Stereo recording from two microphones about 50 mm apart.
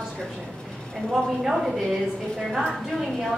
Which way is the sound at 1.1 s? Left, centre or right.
Centre.